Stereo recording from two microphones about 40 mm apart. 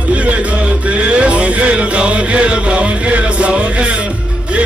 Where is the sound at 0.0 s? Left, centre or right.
Right.